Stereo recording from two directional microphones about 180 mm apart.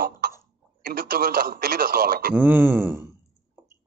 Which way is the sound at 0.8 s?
55° right (ahead or behind).